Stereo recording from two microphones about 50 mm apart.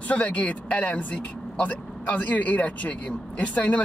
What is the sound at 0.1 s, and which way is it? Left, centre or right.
Speech, left.